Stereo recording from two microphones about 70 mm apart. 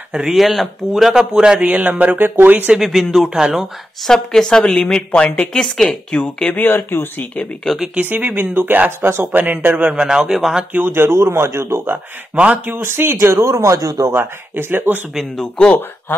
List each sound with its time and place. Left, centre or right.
0.3 s speech: centre
1.7 s speech: right
2.7 s speech: centre
4.1 s a woman's voice: centre
6.5 s speech: left
7.6 s speech: centre
7.9 s speech: right
9.4 s a man's voice: right; by 10.6 s centre
10.7 s speech: right
14.1 s speech: right
15.1 s speech: centre
15.5 s a woman's voice: centre
16.1 s speech: left